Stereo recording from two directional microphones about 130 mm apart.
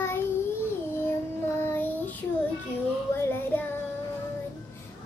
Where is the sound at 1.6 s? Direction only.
15° left (ahead or behind).